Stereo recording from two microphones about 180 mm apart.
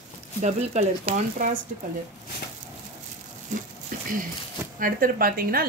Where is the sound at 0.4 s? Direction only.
40° right (ahead or behind).